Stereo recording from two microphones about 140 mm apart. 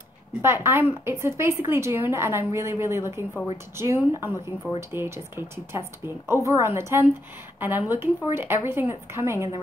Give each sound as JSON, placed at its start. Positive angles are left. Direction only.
{"t": 0.4, "sound": "a woman's voice", "side_deg": -15}